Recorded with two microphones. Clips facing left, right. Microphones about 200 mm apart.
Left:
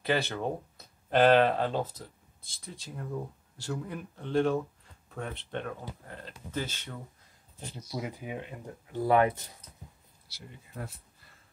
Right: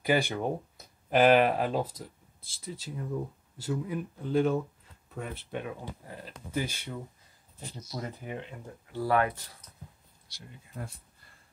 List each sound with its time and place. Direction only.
0.0 s speech: 10° right (ahead or behind)
7.9 s speech: 10° left (ahead or behind)
10.2 s speech: 5° left (ahead or behind)